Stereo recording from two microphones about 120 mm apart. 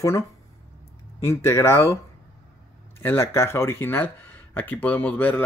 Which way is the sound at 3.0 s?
20° left (ahead or behind).